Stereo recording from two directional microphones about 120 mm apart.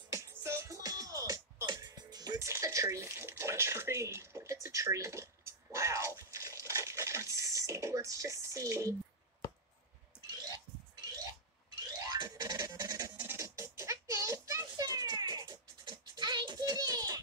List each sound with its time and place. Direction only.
0.1 s music: 25° right (ahead or behind)
12.0 s music: 30° right (ahead or behind)